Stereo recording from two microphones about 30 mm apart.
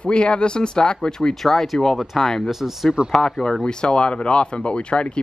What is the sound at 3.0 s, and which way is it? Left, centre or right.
Speech, right.